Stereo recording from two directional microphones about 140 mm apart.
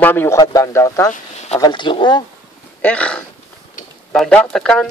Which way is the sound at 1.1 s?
55° left (ahead or behind).